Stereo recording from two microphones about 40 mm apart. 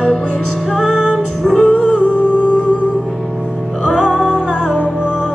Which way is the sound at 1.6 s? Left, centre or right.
Left.